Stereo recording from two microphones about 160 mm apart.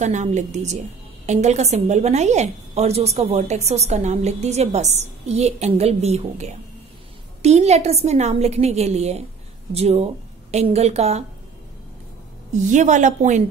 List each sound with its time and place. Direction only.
0.0 s a woman's voice: 45° right (ahead or behind)
12.6 s a woman's voice: 50° right (ahead or behind)